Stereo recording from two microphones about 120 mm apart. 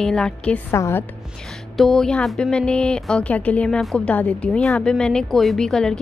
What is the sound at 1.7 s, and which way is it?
A woman's voice, 5° left (ahead or behind).